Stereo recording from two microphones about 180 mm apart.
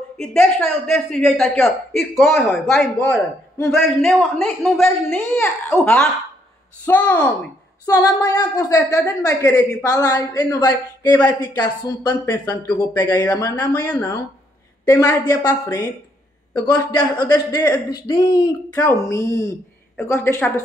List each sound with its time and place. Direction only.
0.2 s a man's voice: 5° left (ahead or behind)
7.8 s a woman's voice: 20° left (ahead or behind)